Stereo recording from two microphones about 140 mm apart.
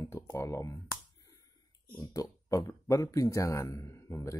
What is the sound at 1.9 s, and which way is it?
Speech, 25° left (ahead or behind).